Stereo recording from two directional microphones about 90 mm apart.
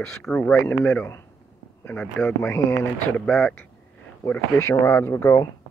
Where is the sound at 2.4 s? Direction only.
30° left (ahead or behind).